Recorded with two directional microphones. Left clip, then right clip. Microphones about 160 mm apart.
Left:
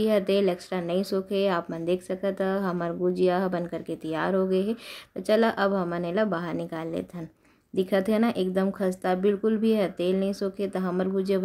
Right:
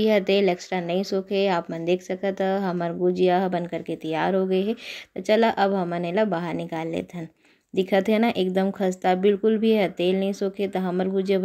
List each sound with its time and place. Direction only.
0.0 s speech: 10° right (ahead or behind)